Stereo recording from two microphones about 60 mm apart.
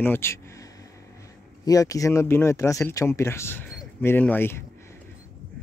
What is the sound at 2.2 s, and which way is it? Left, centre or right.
Speech, left.